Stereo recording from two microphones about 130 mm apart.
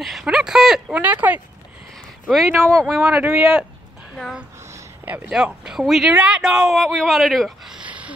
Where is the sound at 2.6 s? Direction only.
5° left (ahead or behind).